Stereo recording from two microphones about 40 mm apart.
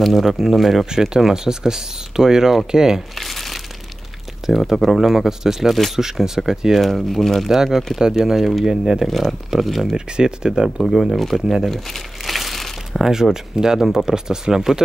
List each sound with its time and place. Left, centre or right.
0.0 s speech: centre
0.8 s speech: centre
3.2 s crumpling: centre
4.7 s speech: centre
6.8 s speech: centre
7.4 s speech: centre
9.0 s speech: centre
9.9 s speech: centre
10.9 s crumpling: centre
13.0 s speech: centre